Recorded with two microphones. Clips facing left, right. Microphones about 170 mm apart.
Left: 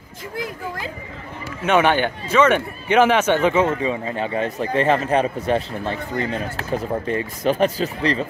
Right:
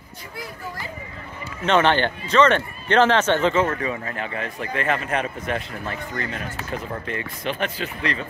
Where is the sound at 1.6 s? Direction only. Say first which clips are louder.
Left 1 dB; 10° left (ahead or behind); by 8.2 s 35° left (ahead or behind).